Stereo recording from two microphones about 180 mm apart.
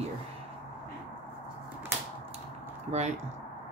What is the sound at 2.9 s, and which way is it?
Speech, 35° right (ahead or behind).